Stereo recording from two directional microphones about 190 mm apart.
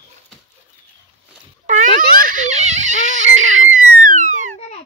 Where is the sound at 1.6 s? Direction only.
45° right (ahead or behind).